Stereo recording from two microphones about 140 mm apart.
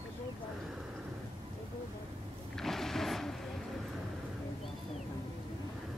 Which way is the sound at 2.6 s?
Centre (ahead or behind).